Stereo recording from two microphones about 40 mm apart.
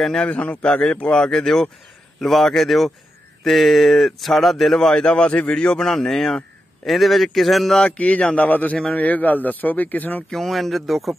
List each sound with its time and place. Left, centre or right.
0.0 s a man's voice: centre
0.3 s a man's voice: left
1.1 s a man's voice: centre
5.9 s a man's voice: centre
6.9 s a man's voice: centre
8.4 s a man's voice: left
10.3 s a man's voice: centre